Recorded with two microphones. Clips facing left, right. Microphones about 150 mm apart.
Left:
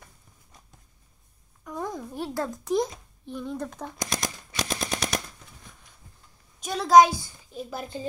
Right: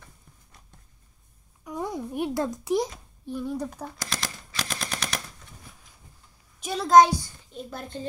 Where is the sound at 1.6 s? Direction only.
10° right (ahead or behind).